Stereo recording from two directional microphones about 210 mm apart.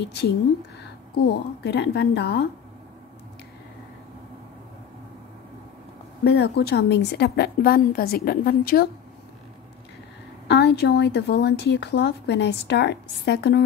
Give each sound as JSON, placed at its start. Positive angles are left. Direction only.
{"t": 0.0, "sound": "speech", "side_deg": 50}
{"t": 6.2, "sound": "speech", "side_deg": 55}
{"t": 10.5, "sound": "speech", "side_deg": 50}